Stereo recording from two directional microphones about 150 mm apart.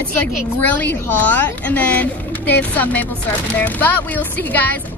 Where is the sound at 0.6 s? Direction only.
10° left (ahead or behind).